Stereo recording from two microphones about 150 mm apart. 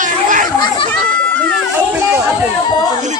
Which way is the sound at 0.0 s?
60° right (ahead or behind).